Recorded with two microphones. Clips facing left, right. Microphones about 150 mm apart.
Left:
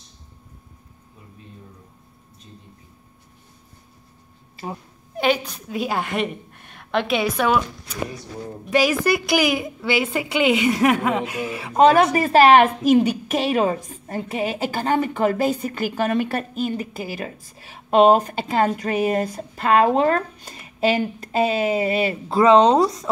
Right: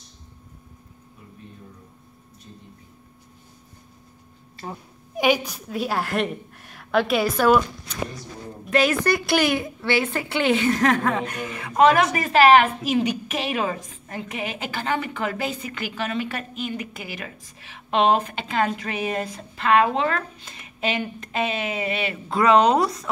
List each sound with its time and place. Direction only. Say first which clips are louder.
4.6 s speech: left 3 dB; 15° left (ahead or behind)
5.1 s a woman's voice: even; 10° right (ahead or behind)
5.7 s a woman's voice: left 1 dB; centre (ahead or behind)
11.7 s a woman's voice: left 3 dB; 30° left (ahead or behind)
22.4 s speech: left 3 dB; 25° left (ahead or behind)